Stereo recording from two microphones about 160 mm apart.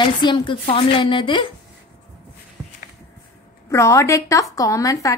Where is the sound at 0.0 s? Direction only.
30° left (ahead or behind).